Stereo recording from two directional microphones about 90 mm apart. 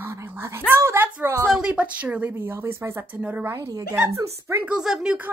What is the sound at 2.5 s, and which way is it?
Speech, 25° right (ahead or behind).